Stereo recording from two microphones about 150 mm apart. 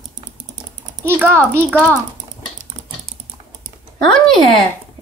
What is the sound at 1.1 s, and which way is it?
Speech, 15° right (ahead or behind).